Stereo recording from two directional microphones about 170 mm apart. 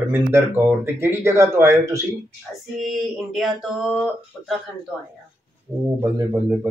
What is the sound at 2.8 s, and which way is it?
Speech, centre (ahead or behind).